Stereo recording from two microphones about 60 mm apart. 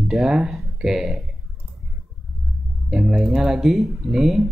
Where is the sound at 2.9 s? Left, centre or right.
Centre.